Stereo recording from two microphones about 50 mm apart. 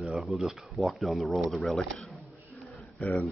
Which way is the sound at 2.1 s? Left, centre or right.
Centre.